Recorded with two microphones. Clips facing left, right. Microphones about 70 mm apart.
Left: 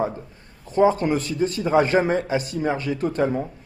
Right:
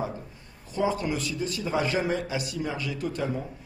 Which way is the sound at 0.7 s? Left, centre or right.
Left.